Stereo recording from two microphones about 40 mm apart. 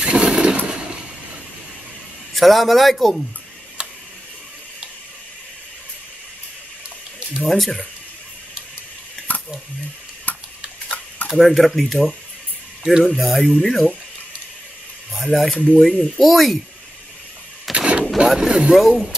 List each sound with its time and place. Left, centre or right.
0.0 s a sound: right
2.3 s a man's voice: centre
7.4 s a man's voice: centre
9.3 s a sound: left
10.3 s tick-tock: left
11.3 s a man's voice: centre
15.1 s a man's voice: centre
15.5 s speech: left
16.2 s a man's voice: centre
17.7 s artillery fire: right
18.3 s a man's voice: centre